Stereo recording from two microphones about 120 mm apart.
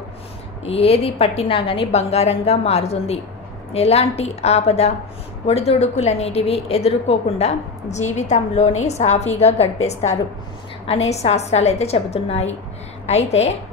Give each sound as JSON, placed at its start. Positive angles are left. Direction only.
{"t": 0.7, "sound": "a woman's voice", "side_deg": 55}